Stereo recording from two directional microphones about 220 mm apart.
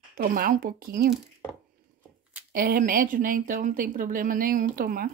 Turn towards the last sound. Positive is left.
turn(degrees=-40)  # may be behind; listen again after turning